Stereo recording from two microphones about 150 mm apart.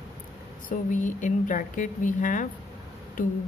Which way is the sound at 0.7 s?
55° left (ahead or behind).